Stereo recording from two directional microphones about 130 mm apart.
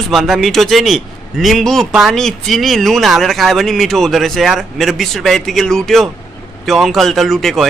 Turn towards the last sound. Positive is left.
turn(degrees=0)  # may be behind; listen again after turning